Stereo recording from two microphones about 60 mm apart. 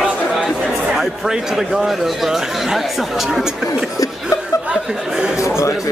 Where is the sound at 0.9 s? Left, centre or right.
Centre.